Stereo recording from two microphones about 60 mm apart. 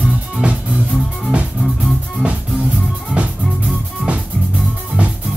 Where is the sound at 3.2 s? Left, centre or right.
Right.